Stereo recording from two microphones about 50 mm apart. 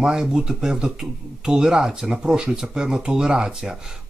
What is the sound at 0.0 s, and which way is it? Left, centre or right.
Speech, centre.